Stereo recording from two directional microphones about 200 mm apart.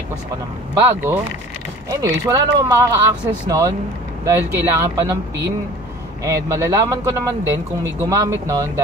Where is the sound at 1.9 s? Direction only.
15° right (ahead or behind).